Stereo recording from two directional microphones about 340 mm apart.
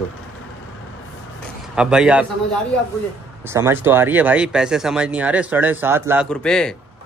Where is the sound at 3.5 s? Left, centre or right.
Centre.